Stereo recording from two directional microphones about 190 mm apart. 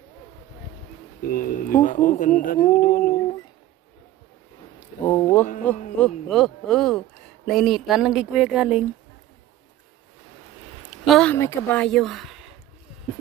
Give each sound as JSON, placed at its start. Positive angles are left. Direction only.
{"t": 1.3, "sound": "speech", "side_deg": 45}
{"t": 4.7, "sound": "a sound", "side_deg": 15}
{"t": 5.9, "sound": "speech", "side_deg": 5}
{"t": 10.9, "sound": "speech", "side_deg": 0}